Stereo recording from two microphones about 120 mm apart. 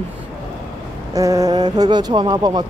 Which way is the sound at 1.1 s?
25° right (ahead or behind).